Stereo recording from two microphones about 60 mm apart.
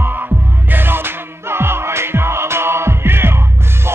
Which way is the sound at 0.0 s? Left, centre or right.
Right.